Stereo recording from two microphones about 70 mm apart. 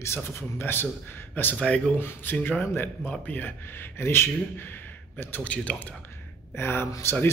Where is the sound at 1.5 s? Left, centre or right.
Centre.